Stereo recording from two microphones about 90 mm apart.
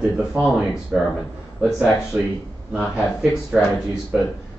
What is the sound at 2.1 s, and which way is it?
Speech, 20° right (ahead or behind).